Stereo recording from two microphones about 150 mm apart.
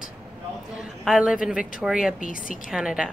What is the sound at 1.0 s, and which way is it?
A woman's voice, 5° right (ahead or behind).